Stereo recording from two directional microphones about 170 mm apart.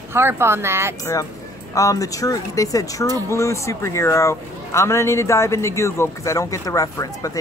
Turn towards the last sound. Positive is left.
turn(degrees=20)  # may be behind; listen again after turning